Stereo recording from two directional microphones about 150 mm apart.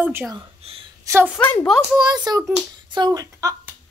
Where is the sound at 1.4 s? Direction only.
15° left (ahead or behind).